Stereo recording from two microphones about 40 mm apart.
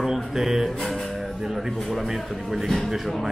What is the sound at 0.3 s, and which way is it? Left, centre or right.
Speech, centre.